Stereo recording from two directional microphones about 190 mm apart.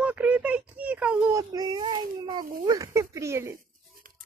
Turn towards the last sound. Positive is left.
turn(degrees=-15)  # may be behind; listen again after turning